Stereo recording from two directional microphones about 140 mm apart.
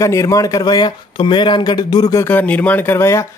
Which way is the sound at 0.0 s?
20° left (ahead or behind).